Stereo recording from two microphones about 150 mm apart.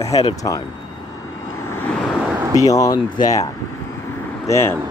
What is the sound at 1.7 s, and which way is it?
Vehicle, 10° left (ahead or behind).